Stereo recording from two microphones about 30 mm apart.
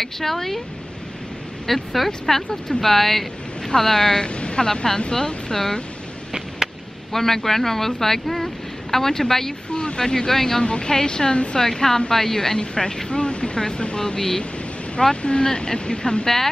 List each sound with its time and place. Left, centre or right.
0.0 s speech: centre
1.7 s speech: centre
3.6 s speech: centre
4.2 s speech: left
5.1 s speech: centre
7.1 s speech: centre
9.7 s a sound: left
9.9 s speech: left
10.6 s speech: left
12.5 s speech: left